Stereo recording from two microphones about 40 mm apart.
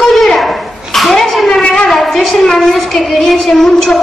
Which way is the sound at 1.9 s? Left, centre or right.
Centre.